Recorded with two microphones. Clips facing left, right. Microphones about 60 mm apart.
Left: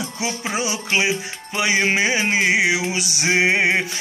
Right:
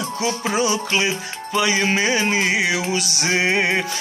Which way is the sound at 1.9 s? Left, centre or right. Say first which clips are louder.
Even; centre.